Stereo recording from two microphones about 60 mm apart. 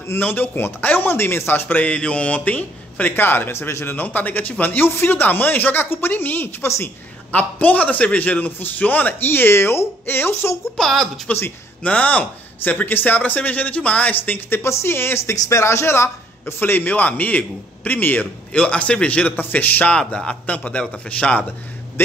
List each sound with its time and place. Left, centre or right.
0.0 s a man's voice: left
1.9 s a man's voice: centre
3.1 s a man's voice: left
3.9 s a man's voice: left
10.8 s speech: centre
11.3 s a man's voice: left
14.6 s a man's voice: left; by 21.4 s centre